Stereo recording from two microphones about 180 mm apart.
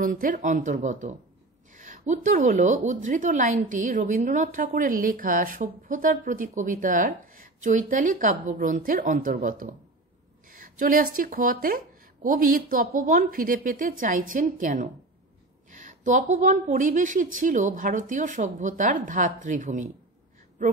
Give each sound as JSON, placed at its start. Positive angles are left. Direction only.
{"t": 0.0, "sound": "a woman's voice", "side_deg": -50}
{"t": 10.8, "sound": "a woman's voice", "side_deg": -50}